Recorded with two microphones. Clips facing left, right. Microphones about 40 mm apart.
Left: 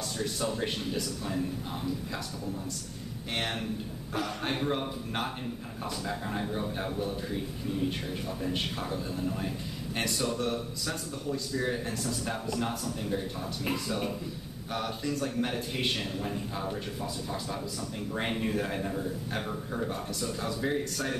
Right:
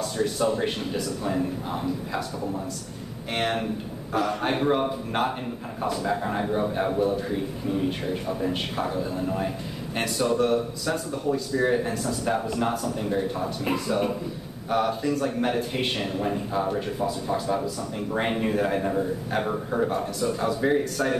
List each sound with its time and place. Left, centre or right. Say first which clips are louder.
0.0 s a man's voice: right 8 dB; centre
3.3 s a man's voice: right 7 dB; centre
20.2 s a man's voice: right 8 dB; centre